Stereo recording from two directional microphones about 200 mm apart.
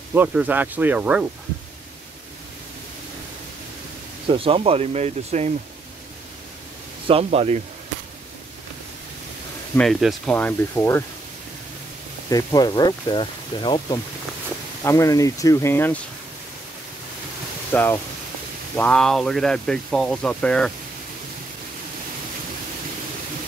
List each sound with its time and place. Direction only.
0.1 s speech: 10° right (ahead or behind)
4.3 s speech: 25° right (ahead or behind)
7.3 s speech: 30° right (ahead or behind)
9.8 s speech: centre (ahead or behind)
12.3 s speech: 20° left (ahead or behind)
17.7 s speech: 10° left (ahead or behind)